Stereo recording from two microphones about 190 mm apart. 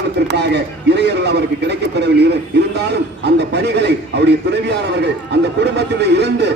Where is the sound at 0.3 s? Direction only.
65° right (ahead or behind).